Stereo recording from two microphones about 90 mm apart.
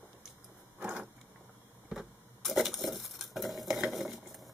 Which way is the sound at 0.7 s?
20° right (ahead or behind).